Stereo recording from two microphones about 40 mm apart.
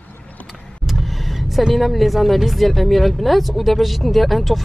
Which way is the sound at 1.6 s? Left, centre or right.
Centre.